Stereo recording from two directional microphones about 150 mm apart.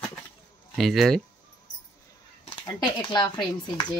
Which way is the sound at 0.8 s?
Centre (ahead or behind).